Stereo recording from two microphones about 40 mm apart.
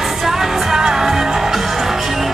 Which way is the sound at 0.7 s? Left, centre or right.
Centre.